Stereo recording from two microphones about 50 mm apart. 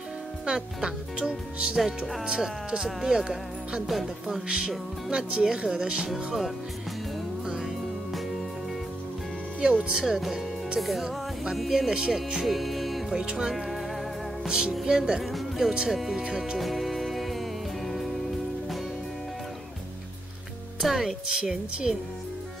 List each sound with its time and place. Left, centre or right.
0.5 s speech: centre
6.0 s speech: centre
9.6 s speech: right; by 13.0 s centre
13.1 s speech: centre
14.9 s speech: centre
16.5 s music: centre
20.8 s speech: centre
21.3 s speech: centre